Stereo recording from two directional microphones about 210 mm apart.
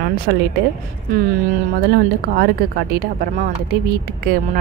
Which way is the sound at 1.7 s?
45° right (ahead or behind).